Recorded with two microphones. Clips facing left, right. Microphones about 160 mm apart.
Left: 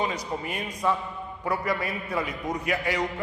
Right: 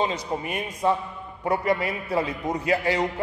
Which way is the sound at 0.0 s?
25° right (ahead or behind).